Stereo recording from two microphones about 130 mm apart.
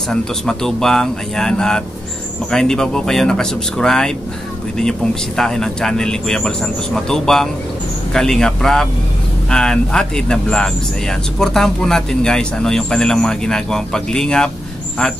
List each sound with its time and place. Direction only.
0.1 s speech: 5° left (ahead or behind)